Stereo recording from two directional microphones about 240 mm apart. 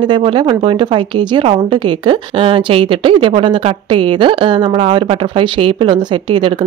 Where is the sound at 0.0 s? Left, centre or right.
Centre.